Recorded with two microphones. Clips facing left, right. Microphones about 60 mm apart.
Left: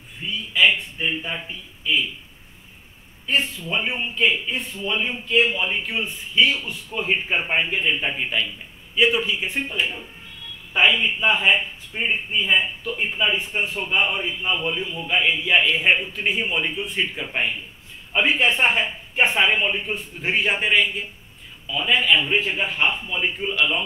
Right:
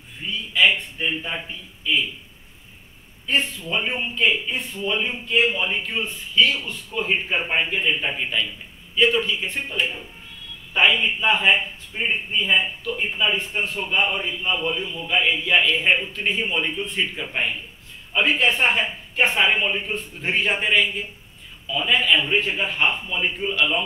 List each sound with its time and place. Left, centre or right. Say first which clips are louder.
0.5 s speech: even; centre
3.3 s a man's voice: even; centre
15.1 s a man's voice: even; centre
15.4 s a man's voice: left 1 dB; centre
18.1 s speech: even; centre
19.3 s a man's voice: even; centre